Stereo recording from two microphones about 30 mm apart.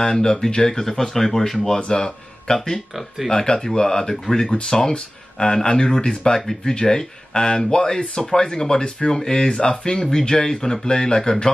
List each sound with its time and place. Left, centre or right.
0.0 s speech: left
2.9 s speech: centre
3.3 s speech: left